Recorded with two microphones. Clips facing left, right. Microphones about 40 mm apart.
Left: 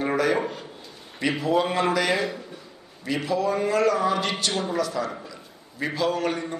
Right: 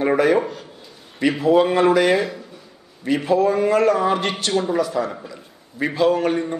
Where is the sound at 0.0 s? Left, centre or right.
Right.